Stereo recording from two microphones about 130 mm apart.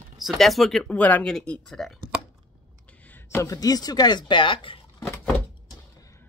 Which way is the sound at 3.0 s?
15° left (ahead or behind).